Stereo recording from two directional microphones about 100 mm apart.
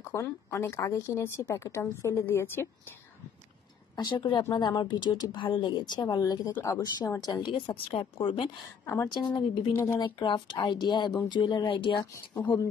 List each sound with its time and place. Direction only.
0.0 s speech: 30° left (ahead or behind)
3.9 s a woman's voice: 45° left (ahead or behind); by 8.5 s 65° left (ahead or behind)
8.8 s a woman's voice: 25° left (ahead or behind)
9.9 s a woman's voice: 50° left (ahead or behind)